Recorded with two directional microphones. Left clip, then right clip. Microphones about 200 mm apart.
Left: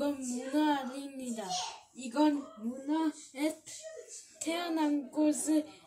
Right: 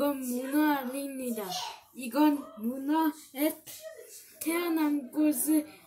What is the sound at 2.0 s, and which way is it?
Child singing, 5° right (ahead or behind).